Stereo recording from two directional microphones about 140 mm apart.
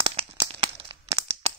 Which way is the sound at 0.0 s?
40° right (ahead or behind).